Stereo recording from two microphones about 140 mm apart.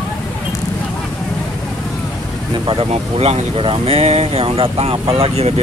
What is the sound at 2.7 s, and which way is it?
Speech, 45° right (ahead or behind).